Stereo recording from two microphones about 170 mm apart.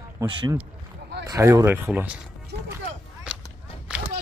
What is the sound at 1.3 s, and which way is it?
Speech, 20° right (ahead or behind).